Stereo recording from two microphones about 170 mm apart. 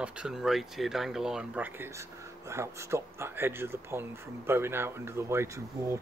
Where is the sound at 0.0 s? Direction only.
5° right (ahead or behind).